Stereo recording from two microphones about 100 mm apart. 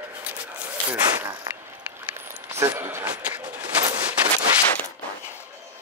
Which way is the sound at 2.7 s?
20° right (ahead or behind).